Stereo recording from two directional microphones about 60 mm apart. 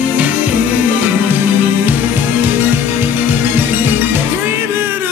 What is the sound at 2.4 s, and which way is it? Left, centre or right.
Music, right.